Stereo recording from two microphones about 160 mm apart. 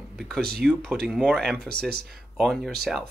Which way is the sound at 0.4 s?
75° right (ahead or behind).